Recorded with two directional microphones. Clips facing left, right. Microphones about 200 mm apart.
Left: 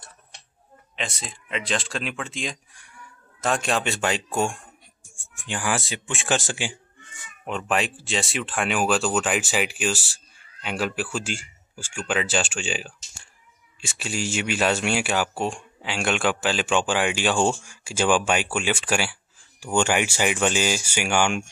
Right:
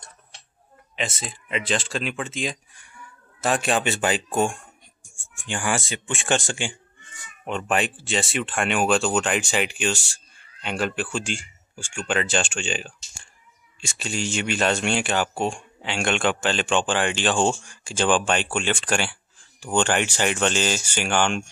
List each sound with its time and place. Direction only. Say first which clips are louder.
0.9 s speech: right 3 dB; centre (ahead or behind)